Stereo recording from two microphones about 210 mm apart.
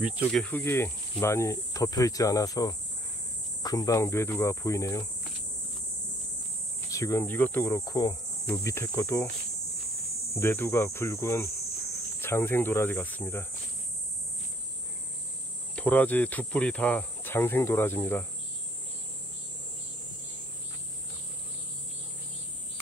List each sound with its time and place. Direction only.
0.0 s speech: 5° left (ahead or behind)
6.9 s speech: 15° left (ahead or behind)
10.4 s speech: 10° left (ahead or behind)
15.7 s speech: 5° left (ahead or behind)